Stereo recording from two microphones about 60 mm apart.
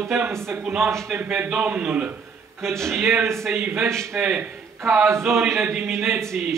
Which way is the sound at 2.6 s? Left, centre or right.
Right.